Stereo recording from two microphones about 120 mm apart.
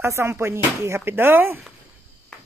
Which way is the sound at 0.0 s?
20° right (ahead or behind).